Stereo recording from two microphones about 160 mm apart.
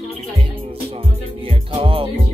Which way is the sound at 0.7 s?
35° right (ahead or behind).